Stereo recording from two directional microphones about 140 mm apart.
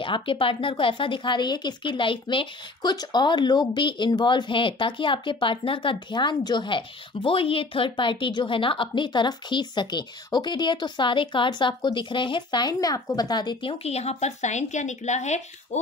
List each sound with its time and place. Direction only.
0.0 s speech: 40° left (ahead or behind); by 15.8 s 55° left (ahead or behind)